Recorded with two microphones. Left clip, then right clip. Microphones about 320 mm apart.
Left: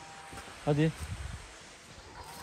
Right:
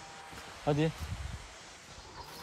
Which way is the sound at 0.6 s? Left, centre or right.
Centre.